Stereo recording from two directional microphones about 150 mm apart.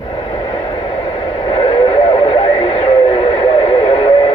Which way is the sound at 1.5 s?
35° left (ahead or behind).